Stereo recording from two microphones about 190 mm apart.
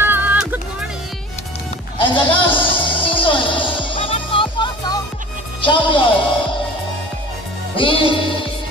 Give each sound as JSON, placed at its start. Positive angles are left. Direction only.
{"t": 0.0, "sound": "music", "side_deg": -10}
{"t": 2.0, "sound": "music", "side_deg": 25}
{"t": 7.7, "sound": "music", "side_deg": 25}